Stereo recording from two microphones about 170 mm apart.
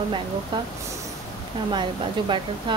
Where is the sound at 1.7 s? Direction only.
30° right (ahead or behind).